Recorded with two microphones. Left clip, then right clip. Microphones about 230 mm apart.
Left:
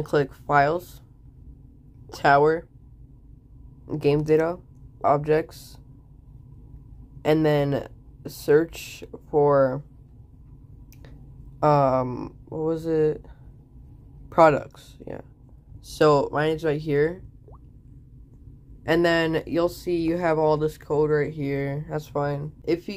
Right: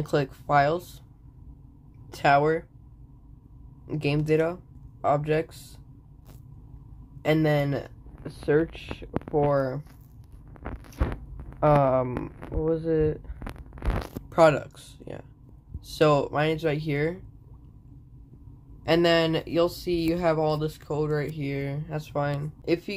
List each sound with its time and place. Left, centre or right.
0.0 s speech: centre
2.0 s speech: centre
3.8 s speech: centre
7.2 s speech: centre
11.6 s speech: centre
14.3 s speech: centre
18.9 s speech: centre